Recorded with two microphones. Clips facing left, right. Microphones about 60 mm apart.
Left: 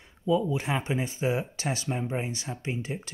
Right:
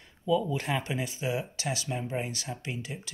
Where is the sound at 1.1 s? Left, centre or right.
Left.